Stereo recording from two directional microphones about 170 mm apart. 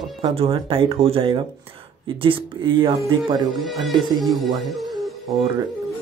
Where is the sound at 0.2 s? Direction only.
35° right (ahead or behind).